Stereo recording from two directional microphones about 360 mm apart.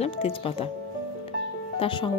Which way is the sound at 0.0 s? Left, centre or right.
Centre.